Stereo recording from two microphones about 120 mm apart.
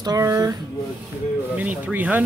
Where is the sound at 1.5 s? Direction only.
15° right (ahead or behind).